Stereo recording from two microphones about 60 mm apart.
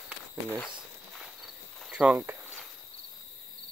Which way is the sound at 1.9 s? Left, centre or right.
Centre.